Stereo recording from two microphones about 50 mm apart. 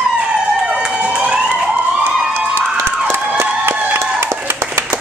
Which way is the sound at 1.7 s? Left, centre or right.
Right.